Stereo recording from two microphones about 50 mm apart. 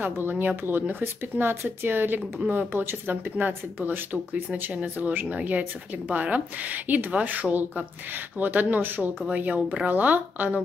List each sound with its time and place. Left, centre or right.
0.0 s speech: right
1.0 s speech: right